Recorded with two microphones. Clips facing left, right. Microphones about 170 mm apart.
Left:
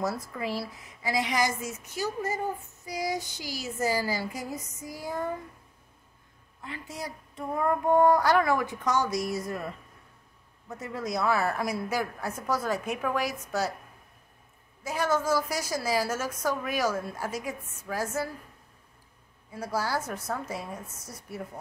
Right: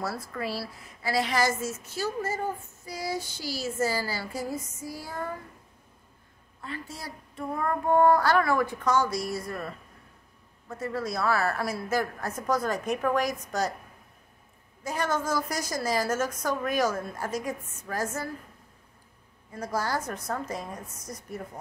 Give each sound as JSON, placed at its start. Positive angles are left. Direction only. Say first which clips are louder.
{"t": 0.0, "sound": "a woman's voice", "louder": "left 1 dB", "side_deg": 15}
{"t": 6.6, "sound": "speech", "louder": "left 1 dB", "side_deg": 15}
{"t": 10.8, "sound": "a woman's voice", "louder": "right 1 dB", "side_deg": 20}
{"t": 14.8, "sound": "a woman's voice", "louder": "left 1 dB", "side_deg": 5}
{"t": 19.5, "sound": "a woman's voice", "louder": "even", "side_deg": 10}